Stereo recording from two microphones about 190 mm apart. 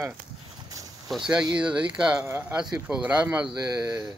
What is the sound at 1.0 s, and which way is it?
Speech, 5° right (ahead or behind).